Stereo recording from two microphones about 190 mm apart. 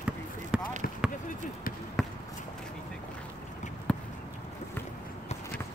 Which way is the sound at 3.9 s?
5° left (ahead or behind).